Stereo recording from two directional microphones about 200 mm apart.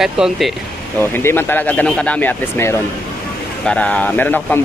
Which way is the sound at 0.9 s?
10° left (ahead or behind).